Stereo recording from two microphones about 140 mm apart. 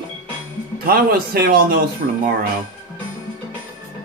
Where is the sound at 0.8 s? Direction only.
90° right.